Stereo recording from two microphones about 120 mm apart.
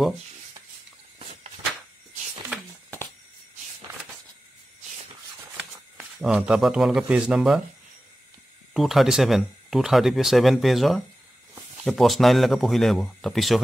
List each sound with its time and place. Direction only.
1.2 s a sound: 70° right (ahead or behind)
5.6 s speech: 5° right (ahead or behind)
8.7 s speech: centre (ahead or behind)